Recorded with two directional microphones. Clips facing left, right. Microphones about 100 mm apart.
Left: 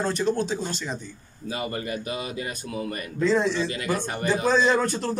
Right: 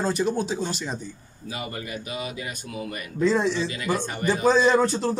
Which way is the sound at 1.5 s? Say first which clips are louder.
Left 3 dB; 35° left (ahead or behind).